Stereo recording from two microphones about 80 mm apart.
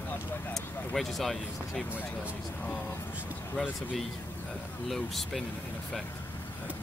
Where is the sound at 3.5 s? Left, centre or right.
Centre.